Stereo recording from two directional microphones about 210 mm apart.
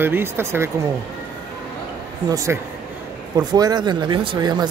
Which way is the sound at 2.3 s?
15° right (ahead or behind).